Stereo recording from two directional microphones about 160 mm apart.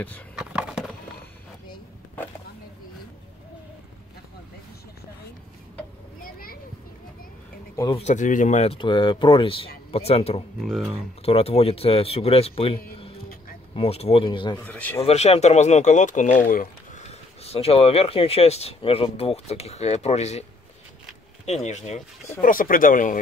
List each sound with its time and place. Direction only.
0.4 s a sound: 5° right (ahead or behind)
6.2 s a sound: 65° left (ahead or behind)
7.9 s speech: 45° left (ahead or behind)
8.7 s speech: 30° left (ahead or behind)
10.6 s speech: centre (ahead or behind)
11.2 s speech: 40° left (ahead or behind)
14.6 s speech: 10° left (ahead or behind)
15.0 s speech: 40° left (ahead or behind); by 17.0 s 60° left (ahead or behind)
17.1 s speech: 40° left (ahead or behind)
21.6 s speech: 45° left (ahead or behind)
22.4 s speech: 60° left (ahead or behind)